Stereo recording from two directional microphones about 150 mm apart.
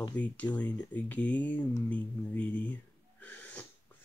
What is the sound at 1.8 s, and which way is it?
Gasp, 10° left (ahead or behind).